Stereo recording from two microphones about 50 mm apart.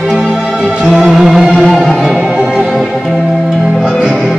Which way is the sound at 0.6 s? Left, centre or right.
Right.